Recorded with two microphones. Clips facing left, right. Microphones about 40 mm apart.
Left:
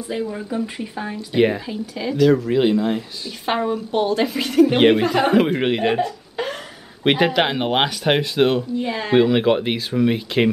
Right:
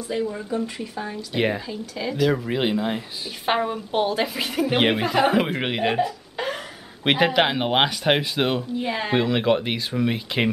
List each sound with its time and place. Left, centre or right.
0.1 s speech: centre
1.3 s a woman's voice: centre
9.1 s a woman's voice: centre